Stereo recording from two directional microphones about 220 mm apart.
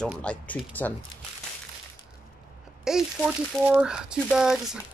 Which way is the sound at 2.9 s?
5° right (ahead or behind).